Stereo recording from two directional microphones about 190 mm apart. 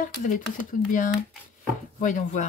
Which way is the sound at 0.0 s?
45° left (ahead or behind).